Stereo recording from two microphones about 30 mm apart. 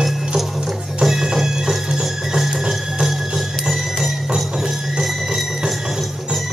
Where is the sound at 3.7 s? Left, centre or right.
Centre.